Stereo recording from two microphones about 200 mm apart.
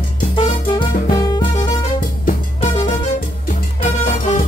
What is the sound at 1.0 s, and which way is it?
Music, 20° left (ahead or behind).